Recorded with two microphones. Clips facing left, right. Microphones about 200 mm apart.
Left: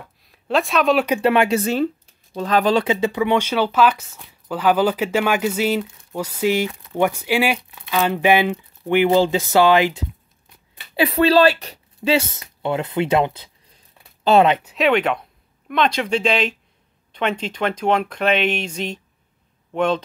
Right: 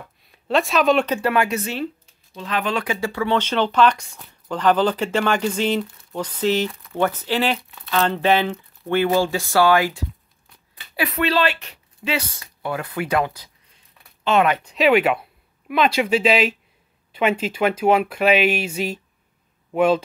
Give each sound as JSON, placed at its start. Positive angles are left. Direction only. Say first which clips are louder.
{"t": 0.2, "sound": "speech", "louder": "even", "side_deg": 0}
{"t": 1.0, "sound": "speech", "louder": "left 4 dB", "side_deg": 15}
{"t": 1.3, "sound": "a woman's voice", "louder": "left 4 dB", "side_deg": 25}
{"t": 1.6, "sound": "speech", "louder": "left 7 dB", "side_deg": 45}
{"t": 11.0, "sound": "a woman's voice", "louder": "left 6 dB", "side_deg": 30}
{"t": 14.6, "sound": "speech", "louder": "right 1 dB", "side_deg": 5}